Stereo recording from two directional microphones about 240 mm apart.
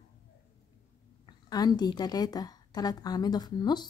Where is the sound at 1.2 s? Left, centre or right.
Centre.